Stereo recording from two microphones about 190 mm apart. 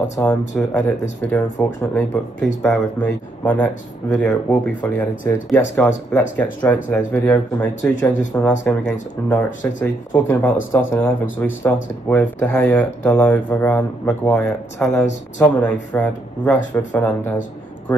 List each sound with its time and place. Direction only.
0.1 s speech: 15° left (ahead or behind)